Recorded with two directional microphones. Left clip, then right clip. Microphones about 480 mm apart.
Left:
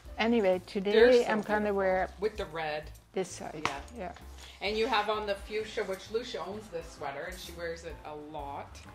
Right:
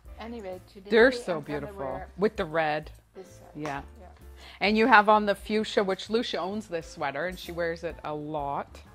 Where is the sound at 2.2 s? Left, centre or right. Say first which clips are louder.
Right 7 dB; right.